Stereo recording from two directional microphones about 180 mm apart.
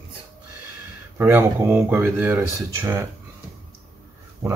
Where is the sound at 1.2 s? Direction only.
10° right (ahead or behind).